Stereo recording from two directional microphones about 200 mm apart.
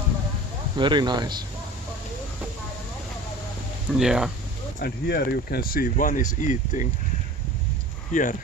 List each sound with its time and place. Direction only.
0.7 s speech: 20° right (ahead or behind)
4.0 s speech: 5° right (ahead or behind)
4.7 s speech: 50° left (ahead or behind)
8.1 s speech: 40° left (ahead or behind)